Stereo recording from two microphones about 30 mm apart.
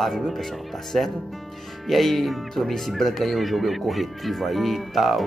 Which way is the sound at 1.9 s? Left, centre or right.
Centre.